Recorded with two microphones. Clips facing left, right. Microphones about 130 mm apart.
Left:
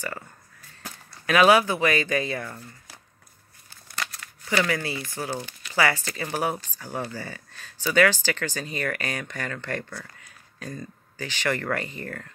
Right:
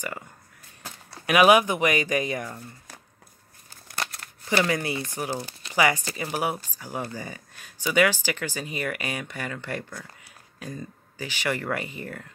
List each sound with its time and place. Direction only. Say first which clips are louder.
1.2 s speech: even; 15° right (ahead or behind)
4.0 s a sound: right 1 dB; 25° right (ahead or behind)
5.3 s speech: right 1 dB; 35° right (ahead or behind)
5.8 s speech: right 1 dB; 15° right (ahead or behind)